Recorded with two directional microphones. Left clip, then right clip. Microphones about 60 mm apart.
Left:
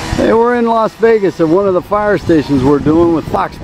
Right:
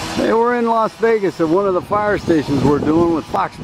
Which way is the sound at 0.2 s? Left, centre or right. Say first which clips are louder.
Left 5 dB; left.